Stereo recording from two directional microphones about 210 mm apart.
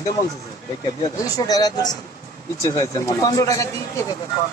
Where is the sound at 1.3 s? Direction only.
20° left (ahead or behind).